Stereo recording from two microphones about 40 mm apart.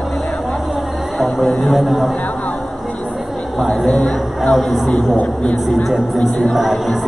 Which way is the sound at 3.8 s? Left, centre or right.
Left.